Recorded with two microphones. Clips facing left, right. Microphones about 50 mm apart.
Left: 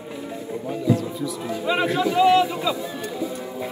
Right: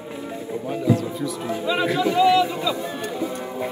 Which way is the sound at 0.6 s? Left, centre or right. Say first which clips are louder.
Right 1 dB; right.